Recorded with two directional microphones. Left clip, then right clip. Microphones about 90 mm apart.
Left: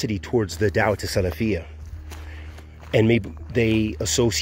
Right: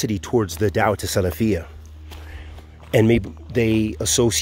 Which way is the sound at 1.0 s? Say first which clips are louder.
Right 2 dB; 55° right (ahead or behind).